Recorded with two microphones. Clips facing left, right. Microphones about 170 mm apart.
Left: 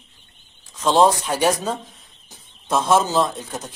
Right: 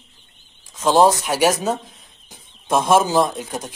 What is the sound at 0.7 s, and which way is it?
Speech, 10° right (ahead or behind).